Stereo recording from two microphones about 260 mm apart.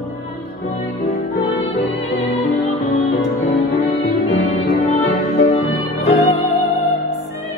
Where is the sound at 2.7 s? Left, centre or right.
Left.